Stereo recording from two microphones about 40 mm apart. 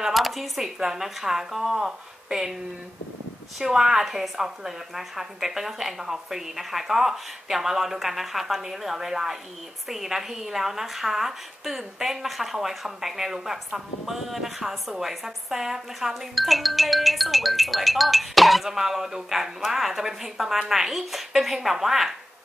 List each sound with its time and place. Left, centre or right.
0.0 s speech: centre
0.7 s a woman's voice: centre
3.5 s a woman's voice: centre